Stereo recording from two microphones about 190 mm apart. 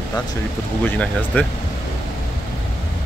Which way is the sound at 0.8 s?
10° left (ahead or behind).